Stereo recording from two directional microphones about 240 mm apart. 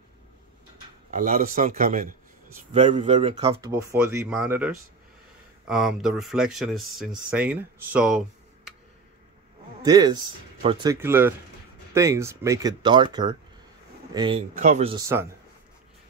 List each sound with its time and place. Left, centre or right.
1.1 s a man's voice: right
2.7 s speech: right
3.7 s speech: centre
9.8 s a man's voice: centre
15.0 s speech: centre